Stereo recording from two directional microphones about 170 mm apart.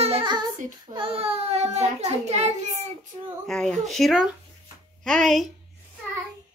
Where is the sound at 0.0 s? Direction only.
30° right (ahead or behind).